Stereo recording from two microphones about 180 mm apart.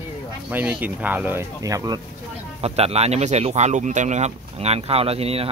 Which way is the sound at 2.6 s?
35° right (ahead or behind).